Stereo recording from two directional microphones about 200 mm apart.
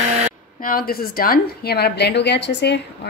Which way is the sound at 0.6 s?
45° left (ahead or behind).